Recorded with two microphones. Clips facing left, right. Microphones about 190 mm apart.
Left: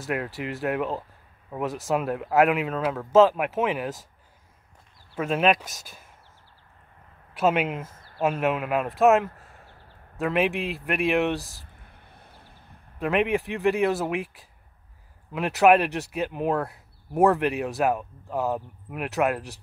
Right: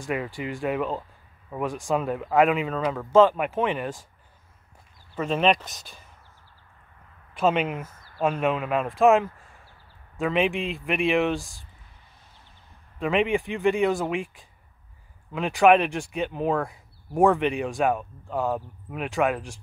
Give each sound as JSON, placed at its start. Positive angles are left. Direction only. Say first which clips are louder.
{"t": 0.0, "sound": "speech", "louder": "even", "side_deg": 5}
{"t": 5.1, "sound": "speech", "louder": "even", "side_deg": 5}
{"t": 7.3, "sound": "speech", "louder": "even", "side_deg": 5}
{"t": 11.8, "sound": "a sound", "louder": "left 5 dB", "side_deg": 55}
{"t": 13.0, "sound": "speech", "louder": "even", "side_deg": 0}